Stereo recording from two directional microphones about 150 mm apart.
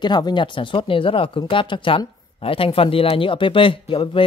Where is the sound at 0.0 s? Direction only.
30° left (ahead or behind).